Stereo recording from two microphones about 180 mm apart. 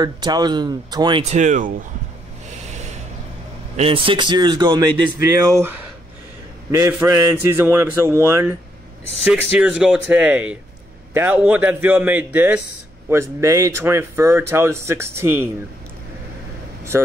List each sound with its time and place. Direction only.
0.0 s speech: 20° right (ahead or behind)
1.3 s speech: 45° right (ahead or behind)
3.7 s speech: 30° right (ahead or behind); by 5.8 s 15° right (ahead or behind)
6.9 s speech: 15° right (ahead or behind)
16.9 s speech: 15° right (ahead or behind)